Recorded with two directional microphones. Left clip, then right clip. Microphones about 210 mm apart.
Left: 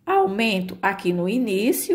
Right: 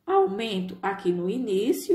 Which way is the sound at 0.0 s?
35° left (ahead or behind).